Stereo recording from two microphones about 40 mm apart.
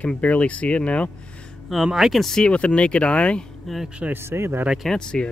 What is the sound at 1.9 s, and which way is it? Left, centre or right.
Speech, centre.